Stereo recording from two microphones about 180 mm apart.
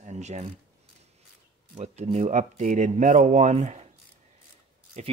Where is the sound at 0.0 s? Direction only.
40° right (ahead or behind).